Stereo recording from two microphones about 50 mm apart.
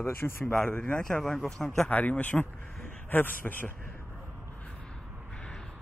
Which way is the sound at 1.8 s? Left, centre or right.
Left.